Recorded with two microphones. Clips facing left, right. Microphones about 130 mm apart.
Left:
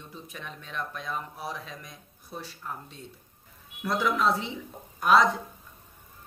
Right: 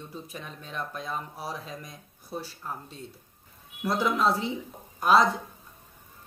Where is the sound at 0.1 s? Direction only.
35° right (ahead or behind).